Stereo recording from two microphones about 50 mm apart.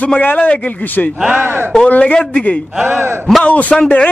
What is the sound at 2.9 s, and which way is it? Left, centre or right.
Speech, right.